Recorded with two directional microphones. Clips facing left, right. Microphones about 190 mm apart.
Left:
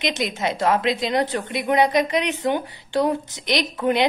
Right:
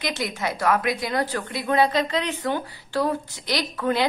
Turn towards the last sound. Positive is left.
turn(degrees=20)  # may be behind; listen again after turning